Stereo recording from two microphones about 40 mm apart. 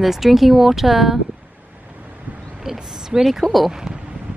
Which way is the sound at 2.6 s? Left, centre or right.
Centre.